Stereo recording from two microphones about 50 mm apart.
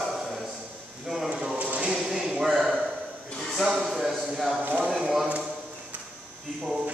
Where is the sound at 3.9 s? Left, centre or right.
Centre.